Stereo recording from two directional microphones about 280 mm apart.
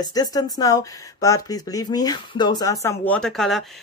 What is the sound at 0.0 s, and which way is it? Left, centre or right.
Speech, centre.